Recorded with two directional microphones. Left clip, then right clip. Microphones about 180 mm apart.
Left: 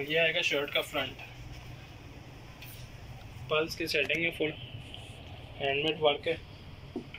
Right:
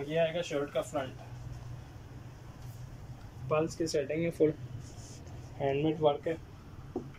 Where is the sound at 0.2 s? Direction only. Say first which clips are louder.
Left 3 dB; centre (ahead or behind).